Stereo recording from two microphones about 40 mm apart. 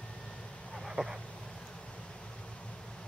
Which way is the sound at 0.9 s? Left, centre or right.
Centre.